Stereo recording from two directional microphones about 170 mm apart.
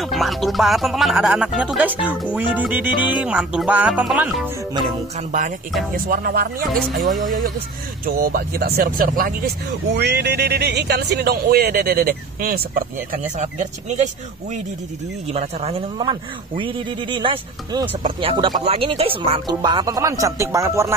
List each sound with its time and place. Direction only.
0.0 s speech: centre (ahead or behind)
2.3 s music: 10° right (ahead or behind)
5.9 s speech: 60° right (ahead or behind)
6.8 s speech: centre (ahead or behind)
7.2 s speech: 55° right (ahead or behind)
9.9 s speech: 80° right; by 14.6 s 45° right (ahead or behind)
16.0 s speech: 30° right (ahead or behind)